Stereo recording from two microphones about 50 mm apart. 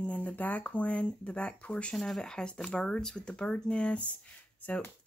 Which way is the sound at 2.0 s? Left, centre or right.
Centre.